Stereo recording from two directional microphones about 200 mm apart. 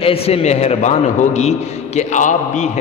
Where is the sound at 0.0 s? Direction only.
30° left (ahead or behind).